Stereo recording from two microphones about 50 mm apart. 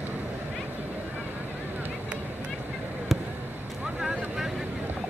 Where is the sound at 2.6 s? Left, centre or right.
Right.